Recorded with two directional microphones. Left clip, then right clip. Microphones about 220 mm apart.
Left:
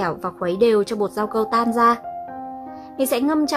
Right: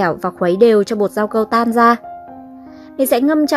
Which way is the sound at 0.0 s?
30° right (ahead or behind).